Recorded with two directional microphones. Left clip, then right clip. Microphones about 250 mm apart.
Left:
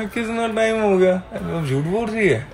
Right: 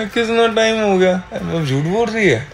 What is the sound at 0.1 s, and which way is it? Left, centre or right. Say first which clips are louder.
Speech: right 10 dB; right.